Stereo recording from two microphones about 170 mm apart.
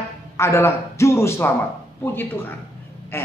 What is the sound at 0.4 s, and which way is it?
A man's voice, 15° left (ahead or behind).